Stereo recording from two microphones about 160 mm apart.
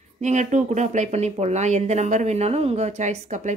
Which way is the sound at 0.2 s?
50° right (ahead or behind).